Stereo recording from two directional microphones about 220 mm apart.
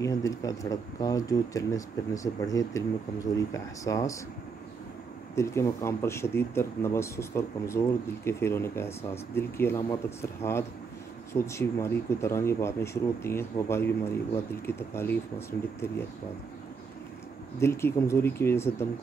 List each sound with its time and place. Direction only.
0.0 s speech: 15° left (ahead or behind)
5.3 s speech: 15° left (ahead or behind)
17.6 s speech: 10° left (ahead or behind)